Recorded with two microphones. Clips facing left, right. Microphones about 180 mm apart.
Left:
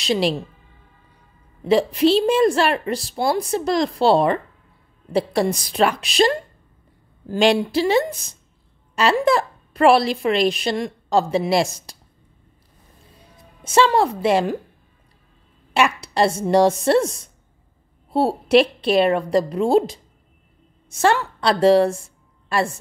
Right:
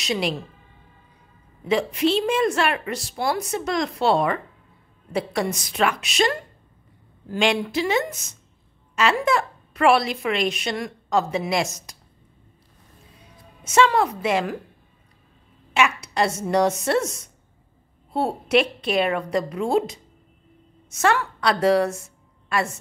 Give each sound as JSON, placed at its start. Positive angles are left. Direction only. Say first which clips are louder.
{"t": 0.0, "sound": "a woman's voice", "louder": "left 5 dB", "side_deg": 30}
{"t": 1.6, "sound": "a woman's voice", "louder": "left 5 dB", "side_deg": 35}
{"t": 13.7, "sound": "a woman's voice", "louder": "left 2 dB", "side_deg": 30}
{"t": 15.7, "sound": "a woman's voice", "louder": "left 2 dB", "side_deg": 35}